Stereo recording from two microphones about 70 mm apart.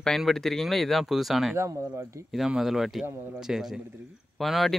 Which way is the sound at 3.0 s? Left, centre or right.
Right.